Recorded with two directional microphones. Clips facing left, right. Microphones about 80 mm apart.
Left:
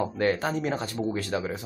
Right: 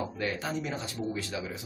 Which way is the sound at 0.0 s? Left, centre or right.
Left.